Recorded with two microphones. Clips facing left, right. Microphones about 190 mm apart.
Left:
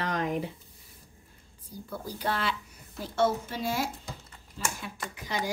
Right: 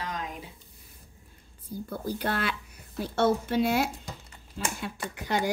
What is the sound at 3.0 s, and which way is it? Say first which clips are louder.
Speech: right 2 dB; 65° right (ahead or behind).